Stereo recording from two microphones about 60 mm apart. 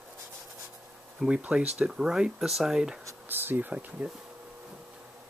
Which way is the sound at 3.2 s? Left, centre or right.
Right.